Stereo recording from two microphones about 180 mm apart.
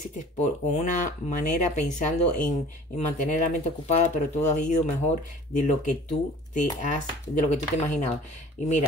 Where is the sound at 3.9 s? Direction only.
40° left (ahead or behind).